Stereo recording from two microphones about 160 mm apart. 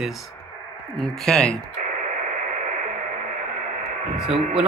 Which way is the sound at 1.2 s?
5° left (ahead or behind).